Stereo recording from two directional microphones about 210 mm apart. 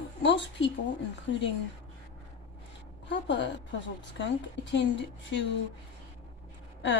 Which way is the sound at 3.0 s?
60° left (ahead or behind).